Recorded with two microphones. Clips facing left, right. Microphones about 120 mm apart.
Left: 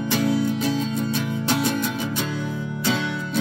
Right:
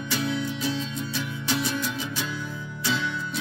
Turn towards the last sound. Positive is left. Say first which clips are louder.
# left 4 dB
turn(degrees=55)  # may be behind; listen again after turning